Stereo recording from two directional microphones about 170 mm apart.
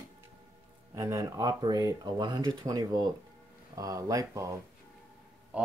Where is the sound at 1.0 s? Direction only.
20° right (ahead or behind).